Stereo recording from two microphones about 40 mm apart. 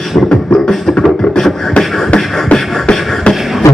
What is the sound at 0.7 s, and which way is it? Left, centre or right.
Beatboxing, centre.